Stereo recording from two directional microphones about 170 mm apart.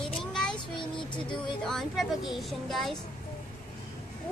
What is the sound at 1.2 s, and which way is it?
A woman's voice, 5° left (ahead or behind).